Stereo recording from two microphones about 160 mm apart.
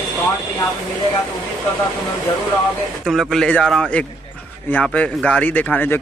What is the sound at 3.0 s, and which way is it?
Speech, centre (ahead or behind).